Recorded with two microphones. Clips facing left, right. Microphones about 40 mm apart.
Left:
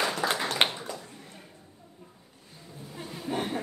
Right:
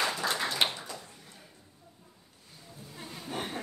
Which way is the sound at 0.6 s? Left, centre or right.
Left.